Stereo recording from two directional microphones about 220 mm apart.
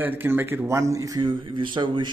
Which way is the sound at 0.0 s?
10° right (ahead or behind).